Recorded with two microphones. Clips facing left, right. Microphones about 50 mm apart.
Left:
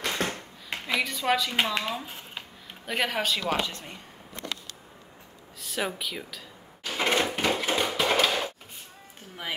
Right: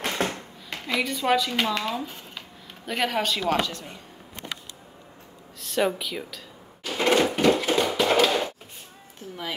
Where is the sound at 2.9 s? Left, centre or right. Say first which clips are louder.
Right 2 dB; centre.